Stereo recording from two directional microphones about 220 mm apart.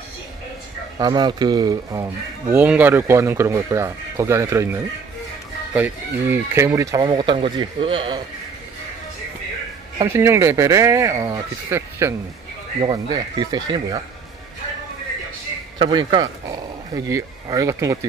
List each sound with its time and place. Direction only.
0.9 s speech: 20° right (ahead or behind)
9.9 s speech: 15° right (ahead or behind)
15.8 s speech: 20° right (ahead or behind)